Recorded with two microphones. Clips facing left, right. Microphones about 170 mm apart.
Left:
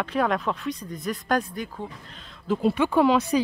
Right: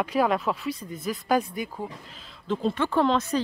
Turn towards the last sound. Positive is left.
turn(degrees=10)  # may be behind; listen again after turning